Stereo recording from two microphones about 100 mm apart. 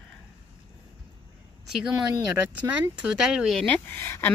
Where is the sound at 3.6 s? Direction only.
20° left (ahead or behind).